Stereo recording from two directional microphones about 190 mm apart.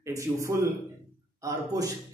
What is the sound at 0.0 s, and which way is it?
A man's voice, 15° right (ahead or behind).